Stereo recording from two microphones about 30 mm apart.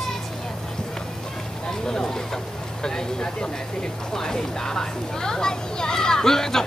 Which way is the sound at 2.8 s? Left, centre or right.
Left.